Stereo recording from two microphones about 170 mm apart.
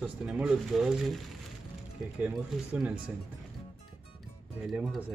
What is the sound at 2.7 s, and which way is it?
Speech, 10° right (ahead or behind).